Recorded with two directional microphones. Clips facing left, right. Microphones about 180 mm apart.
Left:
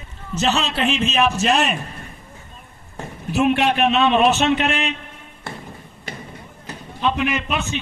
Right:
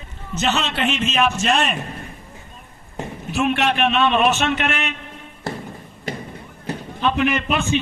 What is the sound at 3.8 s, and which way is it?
Speech, 25° left (ahead or behind).